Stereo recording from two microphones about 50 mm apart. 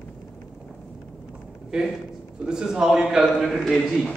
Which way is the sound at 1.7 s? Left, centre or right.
Centre.